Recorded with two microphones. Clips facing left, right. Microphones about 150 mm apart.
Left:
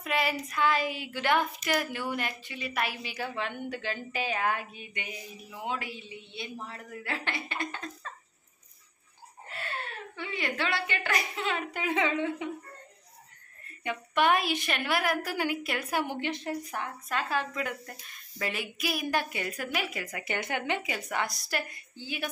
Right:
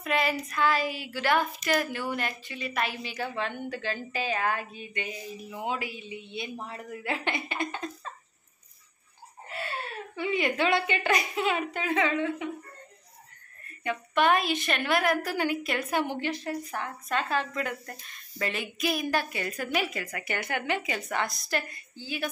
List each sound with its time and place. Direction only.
0.0 s a woman's voice: 10° left (ahead or behind)
5.5 s a woman's voice: 5° right (ahead or behind)
10.1 s a woman's voice: 15° right (ahead or behind)
11.7 s a woman's voice: 15° left (ahead or behind)
13.8 s a woman's voice: 10° left (ahead or behind)
19.4 s a woman's voice: 5° left (ahead or behind)
20.0 s speech: 20° left (ahead or behind)
20.8 s a woman's voice: 10° left (ahead or behind)